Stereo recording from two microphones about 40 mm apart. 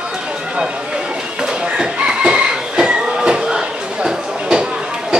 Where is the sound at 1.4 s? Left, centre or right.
Right.